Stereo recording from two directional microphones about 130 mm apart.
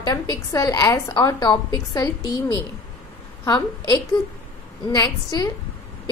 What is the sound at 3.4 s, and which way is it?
A woman's voice, 30° left (ahead or behind).